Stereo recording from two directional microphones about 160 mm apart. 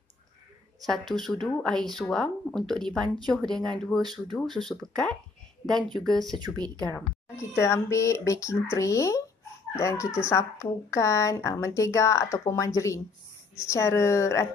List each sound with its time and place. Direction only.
0.9 s speech: centre (ahead or behind)
6.3 s speech: 25° right (ahead or behind)
6.9 s a woman's voice: 20° left (ahead or behind)